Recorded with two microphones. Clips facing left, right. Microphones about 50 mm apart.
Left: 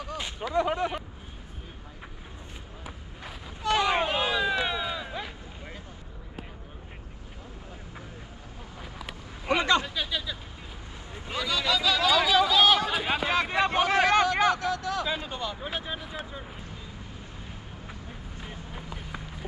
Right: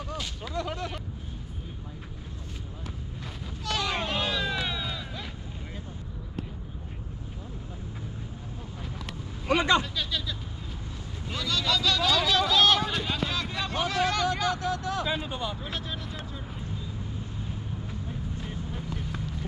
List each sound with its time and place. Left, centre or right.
0.6 s speech: left
2.8 s a sound: centre
8.9 s vehicle: centre
13.3 s vehicle: left
15.0 s a sound: centre
15.6 s vehicle: centre